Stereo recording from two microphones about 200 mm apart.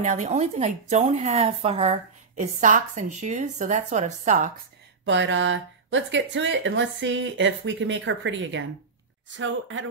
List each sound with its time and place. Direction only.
0.0 s a woman's voice: 35° right (ahead or behind)
5.0 s speech: 65° right (ahead or behind)